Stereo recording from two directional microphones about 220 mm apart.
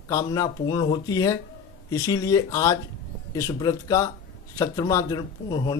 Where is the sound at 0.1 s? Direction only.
15° left (ahead or behind).